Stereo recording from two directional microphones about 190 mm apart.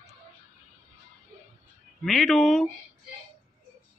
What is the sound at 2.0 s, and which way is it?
Speech, centre (ahead or behind).